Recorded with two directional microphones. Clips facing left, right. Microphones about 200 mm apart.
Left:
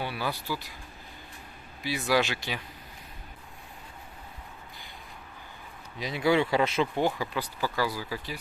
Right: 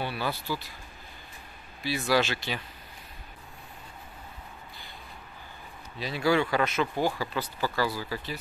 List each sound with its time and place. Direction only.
0.0 s a sound: 10° left (ahead or behind)
1.8 s speech: 15° left (ahead or behind)
5.9 s speech: 20° left (ahead or behind)